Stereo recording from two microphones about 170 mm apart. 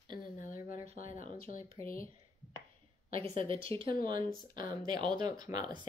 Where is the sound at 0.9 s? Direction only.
50° left (ahead or behind).